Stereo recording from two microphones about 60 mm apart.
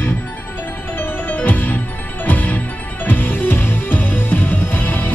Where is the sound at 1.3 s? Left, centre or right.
Left.